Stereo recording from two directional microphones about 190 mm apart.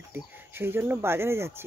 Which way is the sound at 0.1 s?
10° right (ahead or behind).